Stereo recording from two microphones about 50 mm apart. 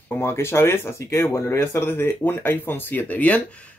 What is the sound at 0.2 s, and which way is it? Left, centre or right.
Speech, left.